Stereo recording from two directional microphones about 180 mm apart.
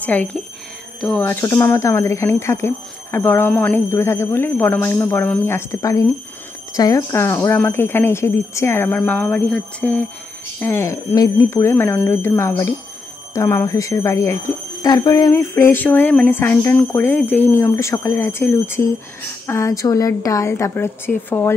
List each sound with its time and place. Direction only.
0.0 s speech: 10° left (ahead or behind)